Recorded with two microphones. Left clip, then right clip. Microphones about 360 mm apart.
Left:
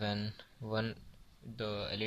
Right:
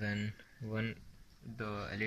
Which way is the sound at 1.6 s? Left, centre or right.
Centre.